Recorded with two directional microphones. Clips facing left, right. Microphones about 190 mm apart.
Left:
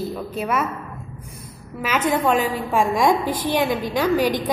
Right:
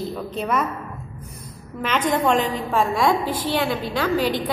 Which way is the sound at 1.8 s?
5° left (ahead or behind).